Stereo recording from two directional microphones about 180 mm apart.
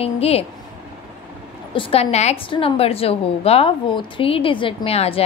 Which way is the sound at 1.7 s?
30° left (ahead or behind).